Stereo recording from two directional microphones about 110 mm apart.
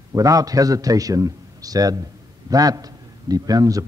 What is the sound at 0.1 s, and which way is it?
A man's voice, 30° right (ahead or behind).